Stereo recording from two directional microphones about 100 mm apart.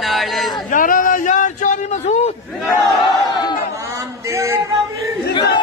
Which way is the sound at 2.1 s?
80° left.